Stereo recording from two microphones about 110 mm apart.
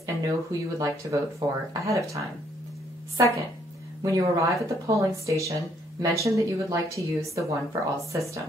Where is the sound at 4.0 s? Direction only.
30° right (ahead or behind).